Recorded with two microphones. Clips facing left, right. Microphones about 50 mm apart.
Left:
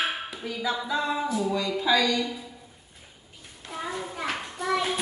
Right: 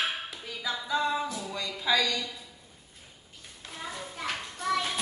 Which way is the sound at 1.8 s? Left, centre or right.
Centre.